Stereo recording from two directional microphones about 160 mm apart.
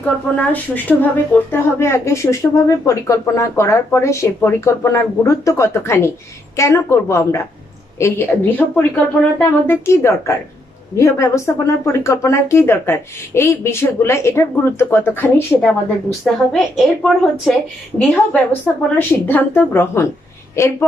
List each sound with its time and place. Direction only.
0.0 s speech: 10° left (ahead or behind)
15.6 s a woman's voice: centre (ahead or behind)